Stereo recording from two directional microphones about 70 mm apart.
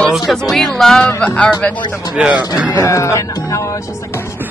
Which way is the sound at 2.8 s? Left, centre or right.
Left.